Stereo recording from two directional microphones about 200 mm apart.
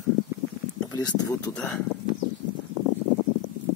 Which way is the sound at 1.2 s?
15° left (ahead or behind).